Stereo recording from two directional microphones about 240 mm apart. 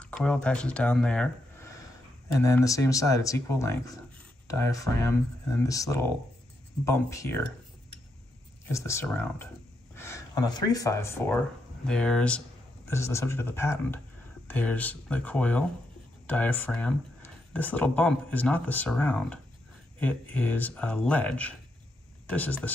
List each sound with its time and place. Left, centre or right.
0.0 s speech: centre
8.6 s speech: centre